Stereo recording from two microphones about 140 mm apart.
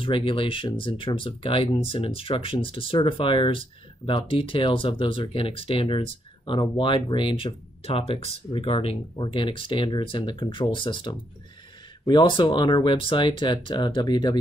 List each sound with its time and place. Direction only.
0.0 s speech: 40° left (ahead or behind)